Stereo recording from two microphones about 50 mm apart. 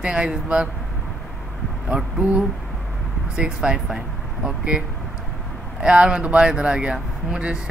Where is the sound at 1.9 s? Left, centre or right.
Centre.